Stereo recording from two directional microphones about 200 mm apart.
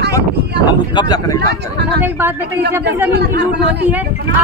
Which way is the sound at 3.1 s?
55° right (ahead or behind).